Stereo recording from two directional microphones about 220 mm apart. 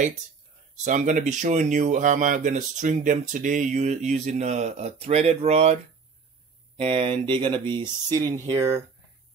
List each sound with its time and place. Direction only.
0.8 s speech: 35° right (ahead or behind)
6.8 s speech: 25° right (ahead or behind)